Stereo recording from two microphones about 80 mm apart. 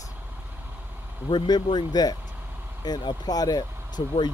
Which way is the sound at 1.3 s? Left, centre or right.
Left.